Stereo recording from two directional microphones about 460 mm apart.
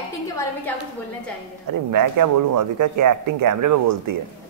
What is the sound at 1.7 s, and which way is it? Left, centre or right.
Speech, right.